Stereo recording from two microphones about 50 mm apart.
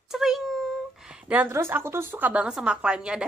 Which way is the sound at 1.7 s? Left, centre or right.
Right.